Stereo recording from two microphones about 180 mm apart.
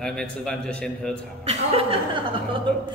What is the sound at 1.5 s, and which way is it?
Speech, 30° right (ahead or behind).